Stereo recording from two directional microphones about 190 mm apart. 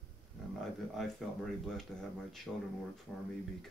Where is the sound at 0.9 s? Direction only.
Centre (ahead or behind).